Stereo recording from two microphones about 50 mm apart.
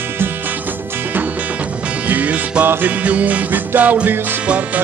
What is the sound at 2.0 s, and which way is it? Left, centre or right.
Music, right.